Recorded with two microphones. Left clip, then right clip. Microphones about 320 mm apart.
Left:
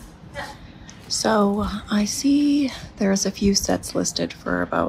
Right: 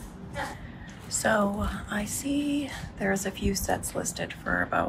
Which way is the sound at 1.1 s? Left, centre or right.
Centre.